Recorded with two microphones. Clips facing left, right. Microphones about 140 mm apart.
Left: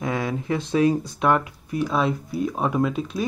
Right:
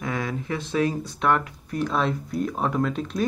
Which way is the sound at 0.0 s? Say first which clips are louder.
Left 3 dB; 20° left (ahead or behind).